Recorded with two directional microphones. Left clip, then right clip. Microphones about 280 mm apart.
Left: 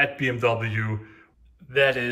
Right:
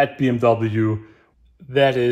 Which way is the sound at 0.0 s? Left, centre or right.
Centre.